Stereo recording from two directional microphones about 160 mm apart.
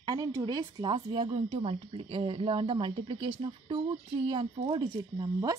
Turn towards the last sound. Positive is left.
turn(degrees=-25)  # may be behind; listen again after turning